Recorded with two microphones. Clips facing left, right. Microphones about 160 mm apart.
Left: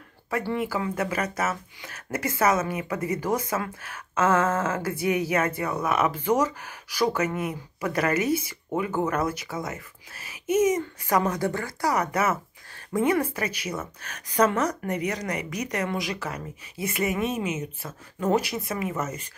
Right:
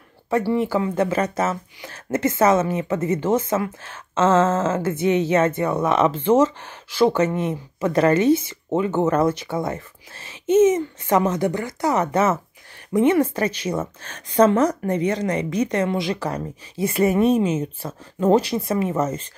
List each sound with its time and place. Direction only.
0.6 s a woman's voice: 25° right (ahead or behind)